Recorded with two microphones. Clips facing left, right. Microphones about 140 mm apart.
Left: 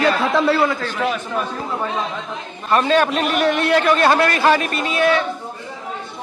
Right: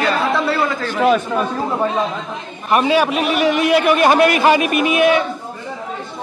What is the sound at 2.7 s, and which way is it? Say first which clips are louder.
A man's voice: right 1 dB; 10° right (ahead or behind).